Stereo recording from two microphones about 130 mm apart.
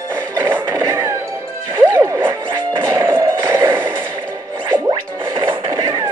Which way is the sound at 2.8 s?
25° right (ahead or behind).